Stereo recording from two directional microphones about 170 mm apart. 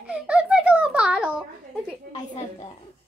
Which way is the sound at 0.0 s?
5° right (ahead or behind).